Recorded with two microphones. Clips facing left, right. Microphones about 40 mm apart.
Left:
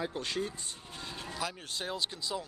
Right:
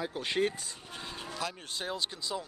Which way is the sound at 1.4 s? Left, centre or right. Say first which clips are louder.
Even; centre.